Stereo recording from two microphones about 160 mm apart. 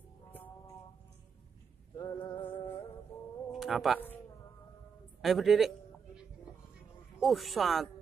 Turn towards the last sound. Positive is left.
turn(degrees=0)  # may be behind; listen again after turning